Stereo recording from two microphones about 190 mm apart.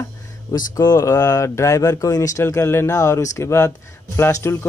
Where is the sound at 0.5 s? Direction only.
20° left (ahead or behind).